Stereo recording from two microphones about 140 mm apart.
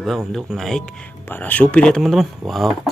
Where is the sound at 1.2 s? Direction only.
15° left (ahead or behind).